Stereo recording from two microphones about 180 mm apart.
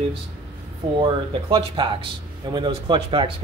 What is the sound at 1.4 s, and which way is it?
Speech, 25° right (ahead or behind).